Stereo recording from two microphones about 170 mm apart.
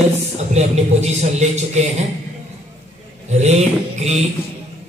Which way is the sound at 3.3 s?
40° right (ahead or behind).